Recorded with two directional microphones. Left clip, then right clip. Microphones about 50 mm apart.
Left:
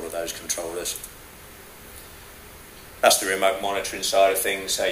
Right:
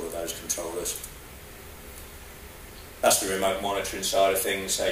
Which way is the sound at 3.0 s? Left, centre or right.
Left.